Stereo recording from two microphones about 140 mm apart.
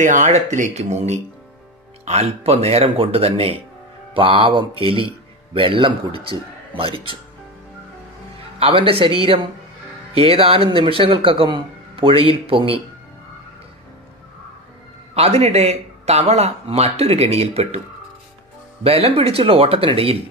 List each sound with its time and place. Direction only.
0.0 s a man's voice: 60° right (ahead or behind); by 6.9 s 40° right (ahead or behind)
8.5 s speech: 40° right (ahead or behind)
15.1 s speech: 45° right (ahead or behind)
18.9 s speech: 45° right (ahead or behind)